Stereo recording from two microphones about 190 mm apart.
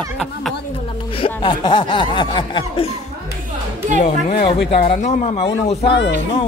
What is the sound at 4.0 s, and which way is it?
Speech, 45° left (ahead or behind).